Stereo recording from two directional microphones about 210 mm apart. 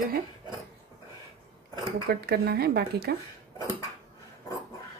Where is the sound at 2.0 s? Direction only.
50° right (ahead or behind).